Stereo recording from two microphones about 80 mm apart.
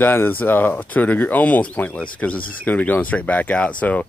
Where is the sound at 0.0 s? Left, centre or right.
Left.